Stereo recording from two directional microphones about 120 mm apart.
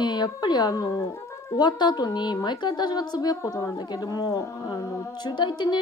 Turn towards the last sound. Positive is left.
turn(degrees=40)  # may be behind; listen again after turning